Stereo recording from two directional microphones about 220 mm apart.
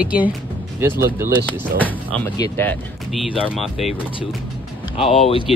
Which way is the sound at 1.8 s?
10° left (ahead or behind).